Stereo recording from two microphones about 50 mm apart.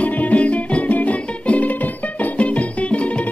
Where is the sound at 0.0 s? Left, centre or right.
Left.